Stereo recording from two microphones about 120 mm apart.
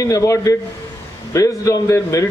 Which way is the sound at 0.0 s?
25° left (ahead or behind).